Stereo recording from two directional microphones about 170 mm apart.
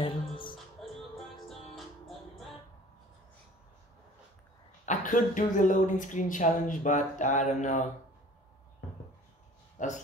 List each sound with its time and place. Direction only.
0.0 s music: 30° left (ahead or behind)
0.8 s music: centre (ahead or behind)
4.8 s a sound: 50° left (ahead or behind)
5.6 s speech: 50° left (ahead or behind)
9.8 s speech: 45° left (ahead or behind)